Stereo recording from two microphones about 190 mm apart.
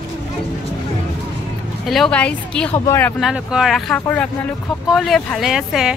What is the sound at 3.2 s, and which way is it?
Speech, 5° right (ahead or behind).